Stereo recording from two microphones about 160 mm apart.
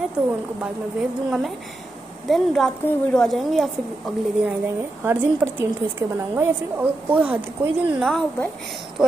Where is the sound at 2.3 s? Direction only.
Centre (ahead or behind).